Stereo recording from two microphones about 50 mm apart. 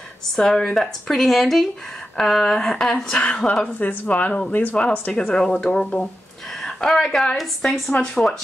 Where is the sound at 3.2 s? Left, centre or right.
Left.